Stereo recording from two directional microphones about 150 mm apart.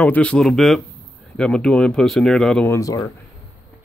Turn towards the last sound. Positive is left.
turn(degrees=20)  # may be behind; listen again after turning